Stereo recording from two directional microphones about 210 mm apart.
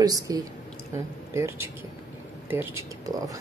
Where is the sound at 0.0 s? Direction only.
15° right (ahead or behind).